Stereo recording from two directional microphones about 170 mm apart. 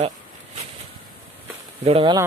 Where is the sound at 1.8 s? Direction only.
35° right (ahead or behind).